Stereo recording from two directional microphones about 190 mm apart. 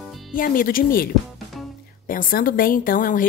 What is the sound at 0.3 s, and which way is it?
Speech, 45° left (ahead or behind).